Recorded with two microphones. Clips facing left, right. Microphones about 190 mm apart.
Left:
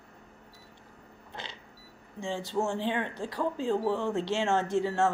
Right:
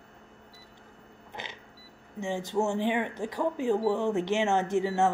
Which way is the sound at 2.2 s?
15° right (ahead or behind).